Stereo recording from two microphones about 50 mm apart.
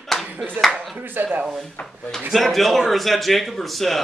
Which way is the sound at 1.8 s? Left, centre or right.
Left.